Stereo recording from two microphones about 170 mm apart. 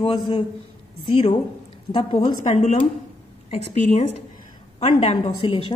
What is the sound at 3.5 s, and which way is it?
A woman's voice, 40° left (ahead or behind).